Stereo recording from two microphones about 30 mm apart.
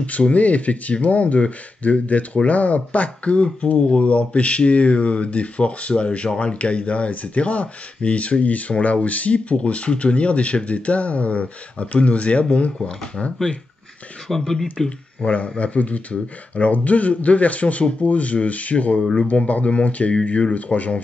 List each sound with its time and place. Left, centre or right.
0.3 s a man's voice: left
3.7 s speech: left
4.0 s speech: left
12.7 s speech: centre
14.2 s speech: centre
15.2 s a man's voice: left